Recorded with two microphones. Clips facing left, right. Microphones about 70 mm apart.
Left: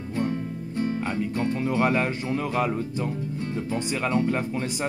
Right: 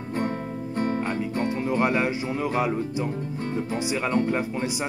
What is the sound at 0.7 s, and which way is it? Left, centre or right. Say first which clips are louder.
Music: right 1 dB; right.